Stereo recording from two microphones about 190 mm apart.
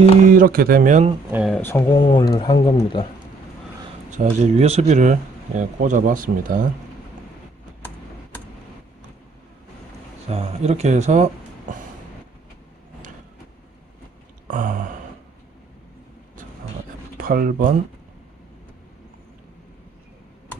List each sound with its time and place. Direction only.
0.4 s speech: 50° right (ahead or behind)
1.3 s speech: centre (ahead or behind)
1.6 s speech: 15° left (ahead or behind)
1.9 s speech: 25° left (ahead or behind)
4.1 s speech: 40° right (ahead or behind)
10.2 s speech: 30° right (ahead or behind)
14.5 s speech: 45° right (ahead or behind)
17.2 s speech: 50° right (ahead or behind)